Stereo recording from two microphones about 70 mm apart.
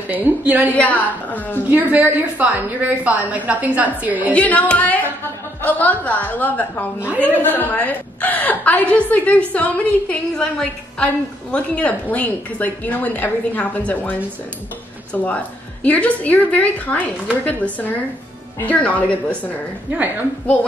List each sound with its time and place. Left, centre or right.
0.1 s a woman's voice: right
0.7 s a woman's voice: left
1.7 s a woman's voice: right
4.3 s a woman's voice: left
11.5 s a woman's voice: centre
15.2 s a woman's voice: left
19.9 s a woman's voice: right